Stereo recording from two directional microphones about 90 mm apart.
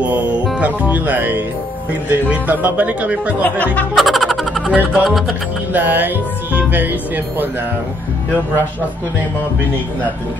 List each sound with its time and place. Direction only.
0.0 s music: 15° right (ahead or behind)
0.6 s speech: 15° right (ahead or behind)
3.4 s speech: 20° left (ahead or behind)
3.9 s music: centre (ahead or behind)
4.7 s speech: 5° right (ahead or behind)
5.7 s speech: 20° right (ahead or behind)